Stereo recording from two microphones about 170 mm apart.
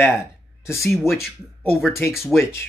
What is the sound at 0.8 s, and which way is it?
Speech, centre (ahead or behind).